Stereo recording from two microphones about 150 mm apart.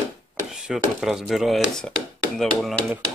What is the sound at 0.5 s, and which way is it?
Speech, 5° right (ahead or behind).